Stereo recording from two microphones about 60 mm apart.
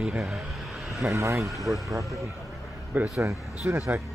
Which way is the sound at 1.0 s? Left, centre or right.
Right.